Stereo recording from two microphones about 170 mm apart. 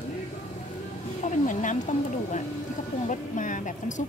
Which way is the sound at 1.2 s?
45° left (ahead or behind).